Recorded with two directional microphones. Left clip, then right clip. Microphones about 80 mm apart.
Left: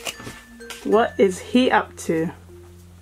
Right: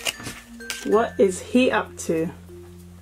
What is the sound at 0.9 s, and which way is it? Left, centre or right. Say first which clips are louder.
Speech: left 2 dB; left.